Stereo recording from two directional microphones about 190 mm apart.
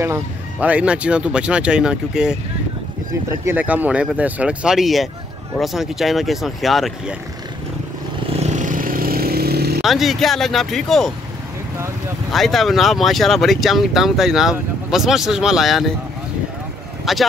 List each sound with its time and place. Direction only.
0.0 s speech: 10° right (ahead or behind)
3.4 s speech: 10° right (ahead or behind)
8.4 s vehicle: 40° right (ahead or behind); by 9.8 s 55° right (ahead or behind)
9.8 s speech: centre (ahead or behind)
12.3 s speech: centre (ahead or behind)
17.0 s speech: centre (ahead or behind)